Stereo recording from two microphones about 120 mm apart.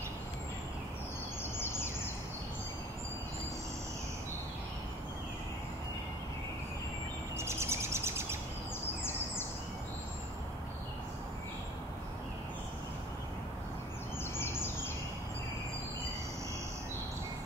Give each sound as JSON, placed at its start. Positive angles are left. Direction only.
{"t": 7.3, "sound": "bird", "side_deg": -20}